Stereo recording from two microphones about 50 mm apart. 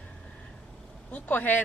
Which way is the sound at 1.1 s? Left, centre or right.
Left.